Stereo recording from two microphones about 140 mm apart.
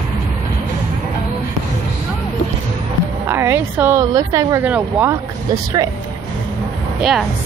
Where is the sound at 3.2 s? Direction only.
15° right (ahead or behind).